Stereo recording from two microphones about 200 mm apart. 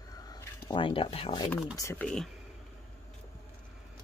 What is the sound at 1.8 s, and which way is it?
Speech, 10° left (ahead or behind).